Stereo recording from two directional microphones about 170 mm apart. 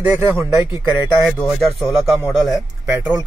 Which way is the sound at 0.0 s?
10° right (ahead or behind).